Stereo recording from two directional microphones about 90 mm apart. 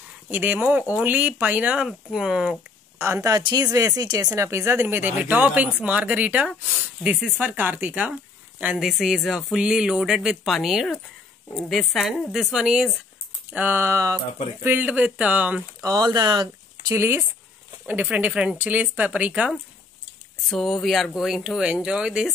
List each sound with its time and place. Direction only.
0.3 s a sound: 20° right (ahead or behind)
0.9 s speech: 20° right (ahead or behind)
1.9 s speech: 5° right (ahead or behind)
3.0 s speech: 30° right (ahead or behind); by 8.7 s 15° right (ahead or behind)
8.7 s speech: 5° right (ahead or behind)
13.5 s a sound: 20° right (ahead or behind)
14.6 s speech: 20° right (ahead or behind)
15.8 s speech: 45° right (ahead or behind)
16.9 s a sound: 30° right (ahead or behind)
17.8 s speech: 15° right (ahead or behind)
20.4 s speech: centre (ahead or behind)